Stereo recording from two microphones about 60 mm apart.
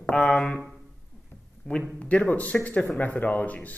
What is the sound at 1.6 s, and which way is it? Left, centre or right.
Speech, left.